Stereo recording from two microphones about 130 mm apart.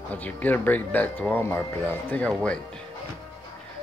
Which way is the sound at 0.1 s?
15° left (ahead or behind).